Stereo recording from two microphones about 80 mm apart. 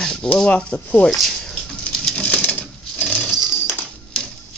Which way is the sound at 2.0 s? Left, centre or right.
Centre.